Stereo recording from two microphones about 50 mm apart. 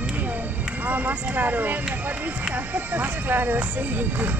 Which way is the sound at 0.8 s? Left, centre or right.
Right.